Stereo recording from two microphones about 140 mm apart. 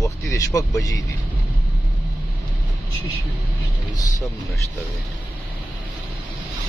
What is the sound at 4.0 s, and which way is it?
Speech, 25° left (ahead or behind).